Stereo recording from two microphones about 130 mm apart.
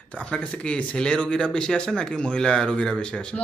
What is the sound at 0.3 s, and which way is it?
Speech, 5° left (ahead or behind).